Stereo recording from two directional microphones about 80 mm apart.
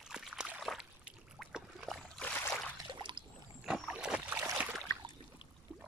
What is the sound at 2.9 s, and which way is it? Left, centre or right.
Rowboat, right.